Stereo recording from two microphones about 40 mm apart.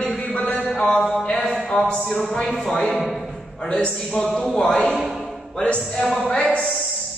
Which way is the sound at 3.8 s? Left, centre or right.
Left.